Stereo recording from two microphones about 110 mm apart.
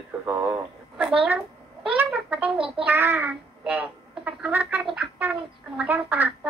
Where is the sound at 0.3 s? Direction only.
15° right (ahead or behind).